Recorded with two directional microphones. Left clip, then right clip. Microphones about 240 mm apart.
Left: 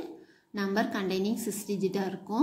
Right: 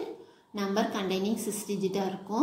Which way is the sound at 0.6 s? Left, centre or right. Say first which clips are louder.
Even; left.